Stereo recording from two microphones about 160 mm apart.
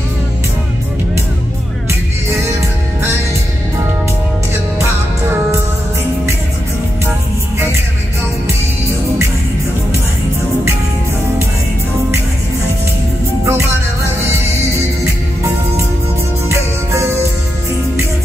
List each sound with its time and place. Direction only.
13.5 s music: 15° right (ahead or behind)
16.4 s music: 15° right (ahead or behind)